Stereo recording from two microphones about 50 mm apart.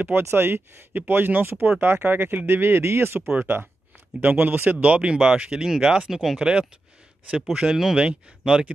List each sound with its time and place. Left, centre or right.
0.1 s speech: right
4.7 s speech: right; by 6.5 s centre
7.5 s speech: centre